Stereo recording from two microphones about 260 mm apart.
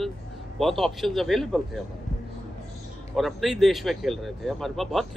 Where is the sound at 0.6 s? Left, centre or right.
Centre.